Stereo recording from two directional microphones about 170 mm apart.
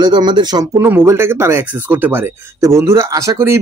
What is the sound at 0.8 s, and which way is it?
Speech, 15° right (ahead or behind).